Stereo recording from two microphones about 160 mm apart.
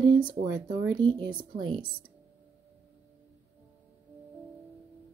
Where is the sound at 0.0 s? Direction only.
30° right (ahead or behind).